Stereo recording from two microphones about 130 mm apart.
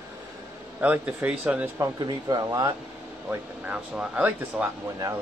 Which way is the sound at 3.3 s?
10° right (ahead or behind).